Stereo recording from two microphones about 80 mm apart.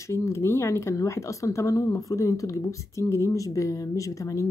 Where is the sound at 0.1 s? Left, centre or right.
Left.